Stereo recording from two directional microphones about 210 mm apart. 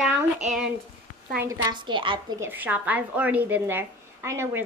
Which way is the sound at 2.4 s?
10° right (ahead or behind).